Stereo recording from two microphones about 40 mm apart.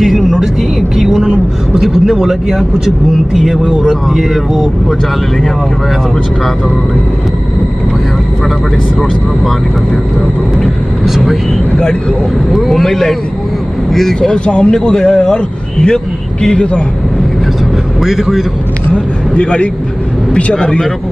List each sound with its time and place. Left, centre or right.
0.0 s vehicle: centre
1.8 s speech: centre
11.7 s speech: left
12.4 s a man's voice: centre
14.3 s speech: left
18.0 s speech: centre
18.9 s a sound: left
20.3 s speech: left